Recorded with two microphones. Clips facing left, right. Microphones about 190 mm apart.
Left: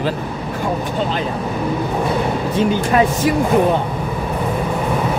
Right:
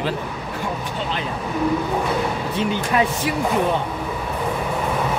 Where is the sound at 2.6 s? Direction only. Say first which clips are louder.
Left 5 dB; 45° left (ahead or behind).